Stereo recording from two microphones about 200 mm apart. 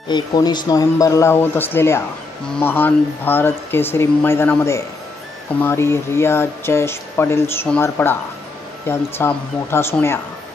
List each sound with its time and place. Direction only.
0.1 s speech: 20° left (ahead or behind)